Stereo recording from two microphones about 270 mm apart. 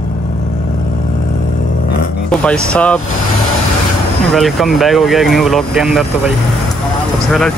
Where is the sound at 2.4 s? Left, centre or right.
Centre.